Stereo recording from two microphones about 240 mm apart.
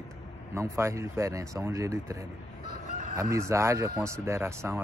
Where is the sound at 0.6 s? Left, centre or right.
Centre.